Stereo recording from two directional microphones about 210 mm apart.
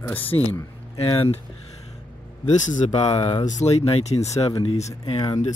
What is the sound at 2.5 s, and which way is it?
Speech, 35° left (ahead or behind).